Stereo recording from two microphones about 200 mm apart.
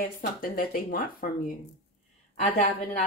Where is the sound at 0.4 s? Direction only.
45° left (ahead or behind).